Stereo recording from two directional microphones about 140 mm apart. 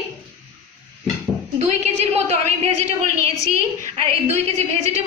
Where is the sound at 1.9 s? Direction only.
50° right (ahead or behind).